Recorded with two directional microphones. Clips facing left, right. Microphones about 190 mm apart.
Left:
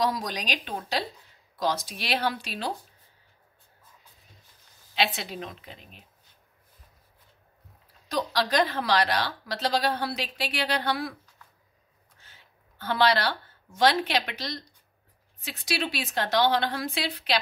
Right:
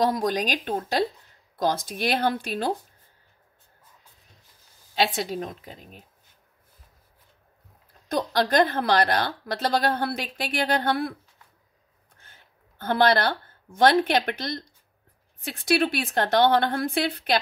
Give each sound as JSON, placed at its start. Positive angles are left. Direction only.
{"t": 0.0, "sound": "speech", "side_deg": -50}
{"t": 4.9, "sound": "speech", "side_deg": -45}
{"t": 8.1, "sound": "speech", "side_deg": -50}
{"t": 12.2, "sound": "speech", "side_deg": -50}